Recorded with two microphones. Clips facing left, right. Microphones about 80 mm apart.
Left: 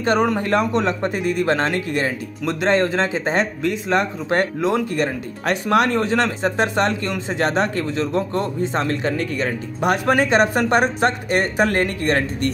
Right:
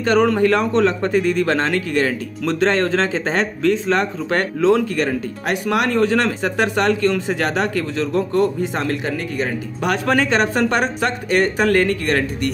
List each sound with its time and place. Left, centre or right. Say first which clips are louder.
0.0 s speech: right 3 dB; left
5.5 s speech: left 1 dB; left
9.8 s speech: left 1 dB; left